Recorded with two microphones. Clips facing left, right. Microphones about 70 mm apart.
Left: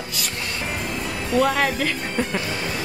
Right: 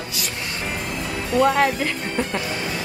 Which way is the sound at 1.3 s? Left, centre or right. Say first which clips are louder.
Right 2 dB; centre.